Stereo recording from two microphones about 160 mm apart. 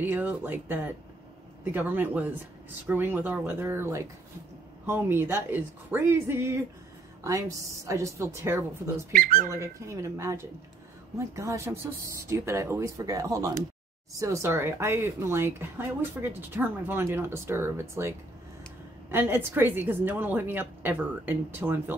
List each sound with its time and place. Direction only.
0.0 s speech: 10° right (ahead or behind)
9.1 s speech: 60° right (ahead or behind)
9.5 s speech: 20° right (ahead or behind)